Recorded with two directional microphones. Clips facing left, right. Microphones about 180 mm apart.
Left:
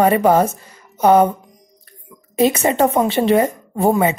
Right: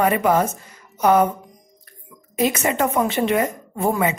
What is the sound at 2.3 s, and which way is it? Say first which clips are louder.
Speech: left 5 dB; 30° left (ahead or behind).